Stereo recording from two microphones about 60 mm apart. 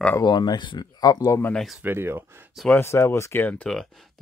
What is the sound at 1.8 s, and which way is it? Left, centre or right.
Speech, right.